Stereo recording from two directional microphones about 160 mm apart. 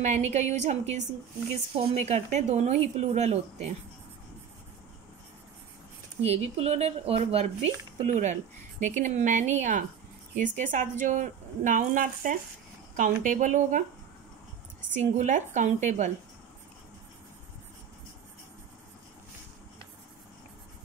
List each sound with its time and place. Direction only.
0.0 s a woman's voice: 45° right (ahead or behind)
6.2 s a woman's voice: 40° right (ahead or behind)
15.0 s a woman's voice: 50° right (ahead or behind)